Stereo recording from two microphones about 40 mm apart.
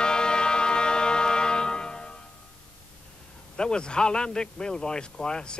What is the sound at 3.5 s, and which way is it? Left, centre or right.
Speech, left.